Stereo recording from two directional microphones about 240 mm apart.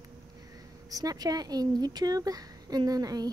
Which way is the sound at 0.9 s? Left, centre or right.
Centre.